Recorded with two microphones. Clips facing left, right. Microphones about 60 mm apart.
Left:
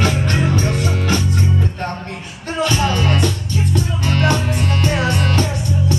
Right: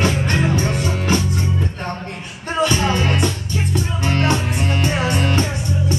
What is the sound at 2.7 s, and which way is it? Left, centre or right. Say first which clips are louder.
Music: left 1 dB; right.